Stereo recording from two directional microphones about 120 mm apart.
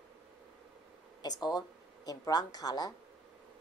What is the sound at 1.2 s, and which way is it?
A woman's voice, 35° left (ahead or behind).